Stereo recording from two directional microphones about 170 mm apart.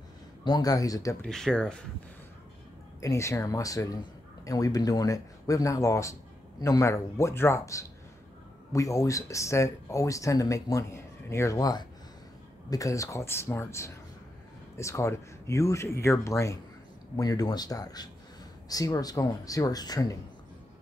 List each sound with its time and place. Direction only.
0.4 s a man's voice: 25° left (ahead or behind)
1.2 s speech: 5° left (ahead or behind)
3.0 s a man's voice: 15° left (ahead or behind)